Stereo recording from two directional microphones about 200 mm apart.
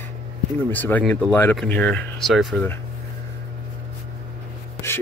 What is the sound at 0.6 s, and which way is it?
Speech, 10° left (ahead or behind).